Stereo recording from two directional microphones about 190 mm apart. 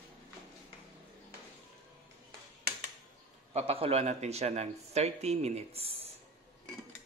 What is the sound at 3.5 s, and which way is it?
A man's voice, 35° right (ahead or behind).